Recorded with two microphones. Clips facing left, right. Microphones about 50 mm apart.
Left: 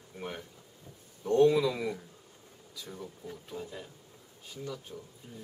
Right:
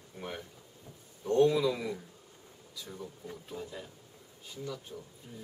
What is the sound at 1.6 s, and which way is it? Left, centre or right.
Speech, centre.